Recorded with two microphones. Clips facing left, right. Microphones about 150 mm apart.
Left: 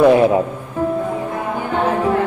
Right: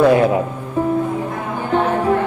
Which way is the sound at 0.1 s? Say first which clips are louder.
Left 2 dB; 25° left (ahead or behind).